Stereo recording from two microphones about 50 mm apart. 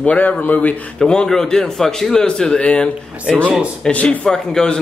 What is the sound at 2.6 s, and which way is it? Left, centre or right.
Speech, left.